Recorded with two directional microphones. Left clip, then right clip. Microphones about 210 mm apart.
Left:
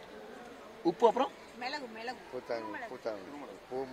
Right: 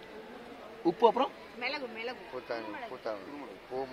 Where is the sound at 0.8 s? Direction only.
Centre (ahead or behind).